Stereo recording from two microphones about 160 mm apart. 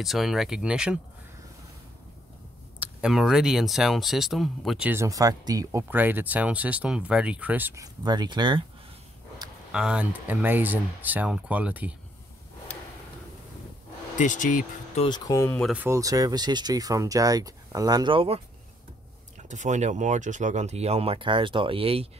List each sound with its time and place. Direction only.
0.0 s speech: centre (ahead or behind)
2.8 s speech: 5° right (ahead or behind)
4.9 s speech: 20° right (ahead or behind)
9.7 s speech: 5° right (ahead or behind)
14.1 s speech: 50° left (ahead or behind)
15.0 s speech: 25° left (ahead or behind)
15.7 s speech: 10° right (ahead or behind)
16.0 s speech: 20° right (ahead or behind)
19.5 s speech: 50° right (ahead or behind)